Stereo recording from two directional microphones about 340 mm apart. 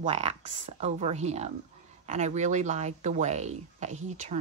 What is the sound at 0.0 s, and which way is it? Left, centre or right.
Speech, centre.